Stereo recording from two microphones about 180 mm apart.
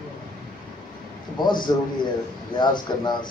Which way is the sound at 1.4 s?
25° left (ahead or behind).